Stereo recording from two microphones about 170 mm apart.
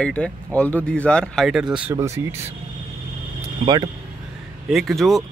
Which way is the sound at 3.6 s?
25° right (ahead or behind).